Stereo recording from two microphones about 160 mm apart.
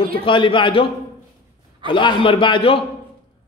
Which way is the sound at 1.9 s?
30° left (ahead or behind).